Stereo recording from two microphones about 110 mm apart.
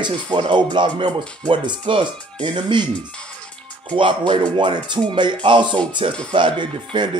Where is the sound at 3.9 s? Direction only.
45° right (ahead or behind).